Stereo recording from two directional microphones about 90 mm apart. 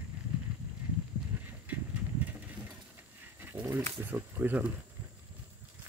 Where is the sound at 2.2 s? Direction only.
20° right (ahead or behind).